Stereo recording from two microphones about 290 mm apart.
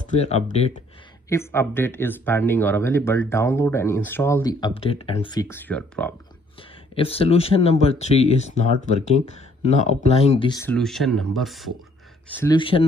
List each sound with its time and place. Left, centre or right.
0.0 s speech: left
1.3 s speech: centre
7.0 s speech: centre
12.4 s speech: centre